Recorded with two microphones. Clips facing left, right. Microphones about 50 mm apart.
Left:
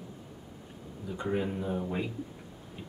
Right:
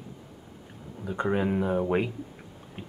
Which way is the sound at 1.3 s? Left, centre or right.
Right.